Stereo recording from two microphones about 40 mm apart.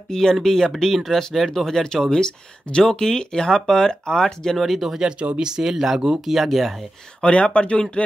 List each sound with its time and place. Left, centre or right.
0.1 s speech: centre
4.6 s speech: centre
5.4 s speech: centre
5.9 s speech: right
6.2 s speech: centre
7.2 s speech: left